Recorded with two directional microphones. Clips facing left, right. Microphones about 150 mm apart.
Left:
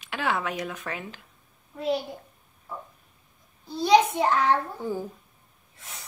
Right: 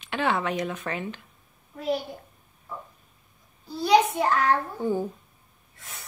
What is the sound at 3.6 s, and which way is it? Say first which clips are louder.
Speech: left 1 dB; 25° left (ahead or behind).